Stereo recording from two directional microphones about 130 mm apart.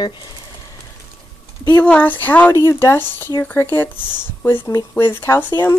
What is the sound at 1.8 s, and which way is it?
Speech, 10° left (ahead or behind).